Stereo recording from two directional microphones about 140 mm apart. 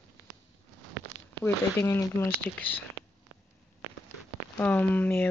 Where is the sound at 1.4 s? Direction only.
20° left (ahead or behind).